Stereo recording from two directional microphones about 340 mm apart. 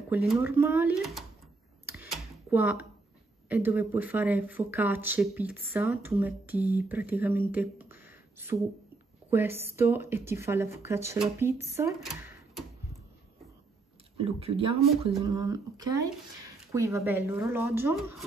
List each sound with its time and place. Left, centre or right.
0.3 s speech: centre
1.9 s computer keyboard: centre
3.4 s speech: centre
14.1 s speech: centre